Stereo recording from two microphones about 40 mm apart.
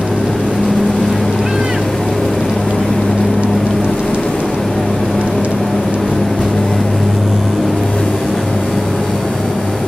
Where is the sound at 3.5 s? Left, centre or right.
Centre.